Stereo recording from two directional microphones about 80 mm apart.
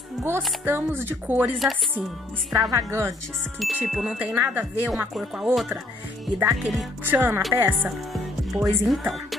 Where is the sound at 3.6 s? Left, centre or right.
Centre.